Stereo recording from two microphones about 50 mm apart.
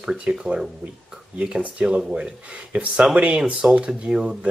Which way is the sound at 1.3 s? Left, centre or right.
Right.